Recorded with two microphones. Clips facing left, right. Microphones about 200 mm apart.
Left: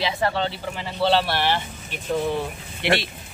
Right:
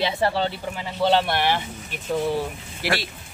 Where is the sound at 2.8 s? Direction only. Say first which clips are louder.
Left 3 dB; 25° left (ahead or behind).